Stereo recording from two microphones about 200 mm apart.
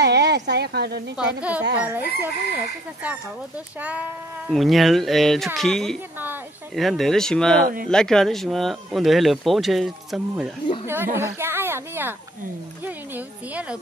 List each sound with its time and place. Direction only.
0.0 s speech: 55° right (ahead or behind)
1.1 s speech: 5° right (ahead or behind)
6.1 s a sound: 10° right (ahead or behind)
6.7 s speech: centre (ahead or behind)
7.6 s speech: 45° right (ahead or behind)
7.9 s speech: 5° left (ahead or behind)